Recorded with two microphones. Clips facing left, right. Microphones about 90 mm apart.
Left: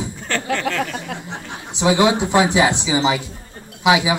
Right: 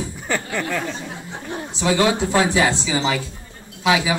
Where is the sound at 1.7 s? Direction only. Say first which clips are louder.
Left 3 dB; 15° left (ahead or behind).